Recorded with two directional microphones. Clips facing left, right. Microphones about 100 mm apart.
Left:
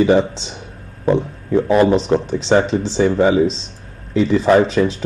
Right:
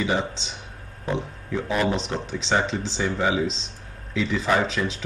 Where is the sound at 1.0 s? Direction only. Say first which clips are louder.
Left 11 dB; 45° left (ahead or behind).